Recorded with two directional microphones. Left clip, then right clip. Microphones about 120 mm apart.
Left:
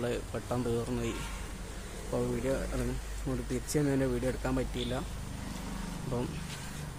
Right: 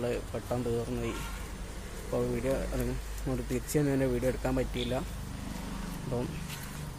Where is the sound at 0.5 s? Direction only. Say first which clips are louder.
Even; 30° left (ahead or behind).